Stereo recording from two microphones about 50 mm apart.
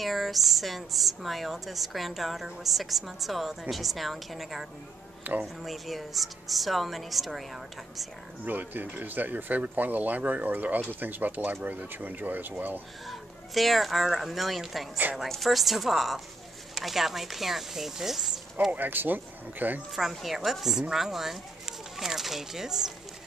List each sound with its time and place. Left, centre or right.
0.0 s a woman's voice: centre
8.5 s speech: right
13.0 s a woman's voice: centre
18.7 s speech: right
20.0 s a woman's voice: centre